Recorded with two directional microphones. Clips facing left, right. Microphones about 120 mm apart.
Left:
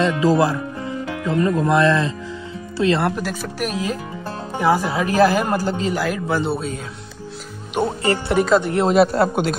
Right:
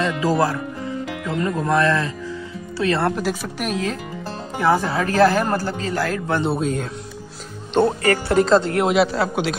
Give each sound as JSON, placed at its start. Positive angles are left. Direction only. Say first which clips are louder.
{"t": 0.0, "sound": "speech", "louder": "left 3 dB", "side_deg": 20}
{"t": 3.1, "sound": "speech", "louder": "right 2 dB", "side_deg": 0}
{"t": 5.9, "sound": "speech", "louder": "left 1 dB", "side_deg": 10}
{"t": 8.0, "sound": "speech", "louder": "right 1 dB", "side_deg": 25}
{"t": 8.9, "sound": "a man's voice", "louder": "left 3 dB", "side_deg": 50}